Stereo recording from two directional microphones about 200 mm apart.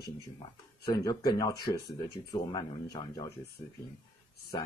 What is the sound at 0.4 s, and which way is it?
Speech, 20° left (ahead or behind).